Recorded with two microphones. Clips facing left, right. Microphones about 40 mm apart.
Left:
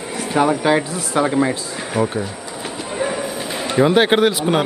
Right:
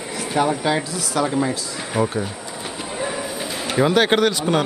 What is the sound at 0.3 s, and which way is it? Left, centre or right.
Speech, left.